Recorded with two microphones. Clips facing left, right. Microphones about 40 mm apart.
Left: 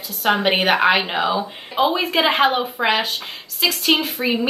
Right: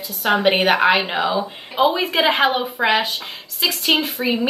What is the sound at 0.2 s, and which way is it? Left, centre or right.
Speech, centre.